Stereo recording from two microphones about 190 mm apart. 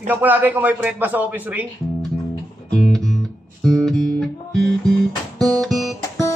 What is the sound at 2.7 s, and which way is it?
Music, 5° left (ahead or behind).